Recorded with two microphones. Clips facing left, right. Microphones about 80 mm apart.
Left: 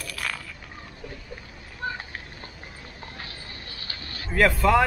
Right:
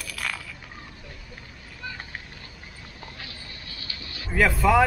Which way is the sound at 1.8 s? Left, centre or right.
Left.